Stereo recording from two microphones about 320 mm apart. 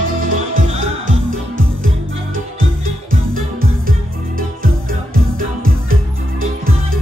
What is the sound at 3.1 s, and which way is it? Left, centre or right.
Music, right.